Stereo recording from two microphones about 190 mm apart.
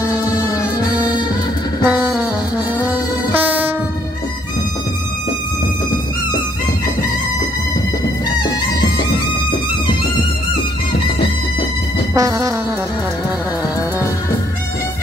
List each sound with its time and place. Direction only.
1.9 s music: 5° right (ahead or behind)
3.3 s train: 10° right (ahead or behind)
12.1 s music: 15° right (ahead or behind)